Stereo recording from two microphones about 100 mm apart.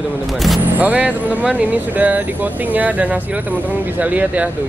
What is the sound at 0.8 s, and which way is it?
Speech, 15° right (ahead or behind).